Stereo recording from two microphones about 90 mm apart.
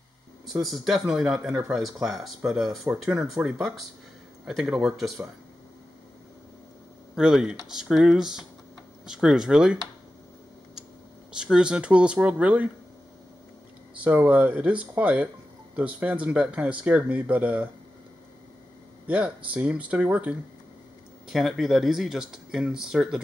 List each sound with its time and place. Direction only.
0.5 s speech: centre (ahead or behind)
7.2 s speech: 5° right (ahead or behind)
11.5 s speech: 10° right (ahead or behind)
14.0 s speech: 20° right (ahead or behind)
19.0 s speech: 15° right (ahead or behind)
21.3 s speech: centre (ahead or behind)